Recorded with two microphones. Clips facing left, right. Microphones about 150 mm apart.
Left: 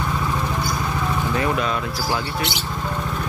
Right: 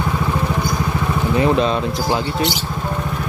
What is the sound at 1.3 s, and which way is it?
Speech, 20° right (ahead or behind).